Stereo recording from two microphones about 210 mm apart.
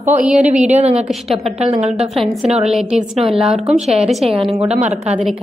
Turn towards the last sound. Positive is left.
turn(degrees=-30)  # may be behind; listen again after turning